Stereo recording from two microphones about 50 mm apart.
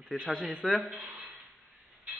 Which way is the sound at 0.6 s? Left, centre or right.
Left.